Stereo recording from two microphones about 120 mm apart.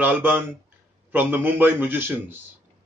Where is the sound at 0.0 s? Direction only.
15° right (ahead or behind).